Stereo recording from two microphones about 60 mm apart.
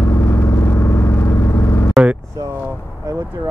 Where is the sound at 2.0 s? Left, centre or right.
Centre.